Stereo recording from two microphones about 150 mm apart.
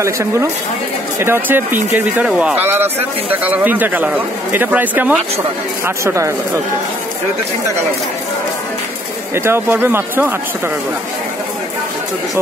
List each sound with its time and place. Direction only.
0.0 s speech: 20° right (ahead or behind)
9.3 s speech: 15° right (ahead or behind)